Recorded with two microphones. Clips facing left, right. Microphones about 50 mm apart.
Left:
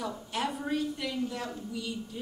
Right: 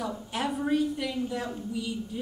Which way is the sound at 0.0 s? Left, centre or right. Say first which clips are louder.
Right 2 dB; centre.